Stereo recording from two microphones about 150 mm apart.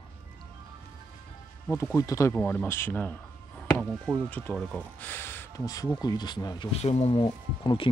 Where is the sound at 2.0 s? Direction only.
20° left (ahead or behind).